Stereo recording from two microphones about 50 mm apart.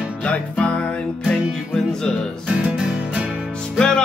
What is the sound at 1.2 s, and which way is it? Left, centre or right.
Music, centre.